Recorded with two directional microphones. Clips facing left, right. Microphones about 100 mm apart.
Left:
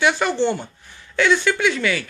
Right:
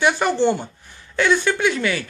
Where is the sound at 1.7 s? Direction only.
30° right (ahead or behind).